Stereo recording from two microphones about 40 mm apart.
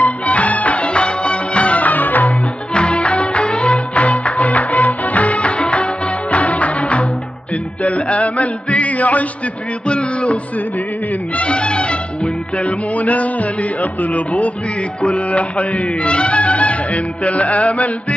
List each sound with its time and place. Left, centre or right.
0.0 s music: left
2.7 s music: left
9.8 s music: left